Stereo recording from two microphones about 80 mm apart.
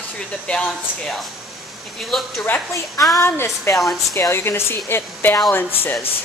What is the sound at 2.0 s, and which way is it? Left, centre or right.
Speech, centre.